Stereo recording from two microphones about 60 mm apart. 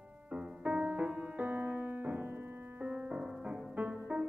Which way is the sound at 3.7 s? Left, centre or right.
Right.